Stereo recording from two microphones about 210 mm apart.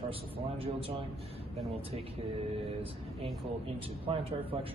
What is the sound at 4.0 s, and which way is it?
Speech, 25° right (ahead or behind).